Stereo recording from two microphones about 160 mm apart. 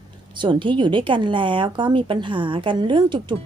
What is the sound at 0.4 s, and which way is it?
A woman's voice, 30° right (ahead or behind).